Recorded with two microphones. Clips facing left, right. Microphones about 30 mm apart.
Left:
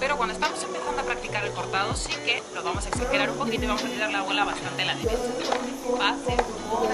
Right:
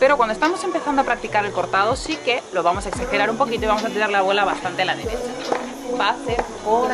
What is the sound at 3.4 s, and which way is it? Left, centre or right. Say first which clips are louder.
Speech: right 7 dB; centre.